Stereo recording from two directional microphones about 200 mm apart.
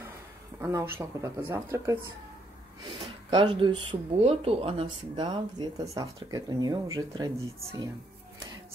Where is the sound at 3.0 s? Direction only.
25° right (ahead or behind).